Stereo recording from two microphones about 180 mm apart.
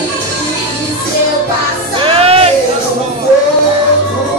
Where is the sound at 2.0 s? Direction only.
30° right (ahead or behind).